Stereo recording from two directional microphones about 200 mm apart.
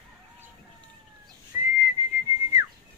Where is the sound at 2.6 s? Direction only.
15° right (ahead or behind).